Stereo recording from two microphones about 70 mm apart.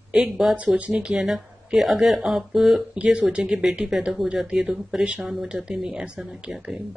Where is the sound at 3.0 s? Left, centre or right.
Centre.